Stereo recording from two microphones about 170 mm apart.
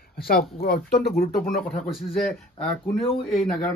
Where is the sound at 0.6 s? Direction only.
60° left (ahead or behind).